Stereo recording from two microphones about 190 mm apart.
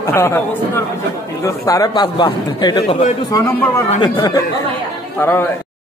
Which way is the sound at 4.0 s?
20° left (ahead or behind).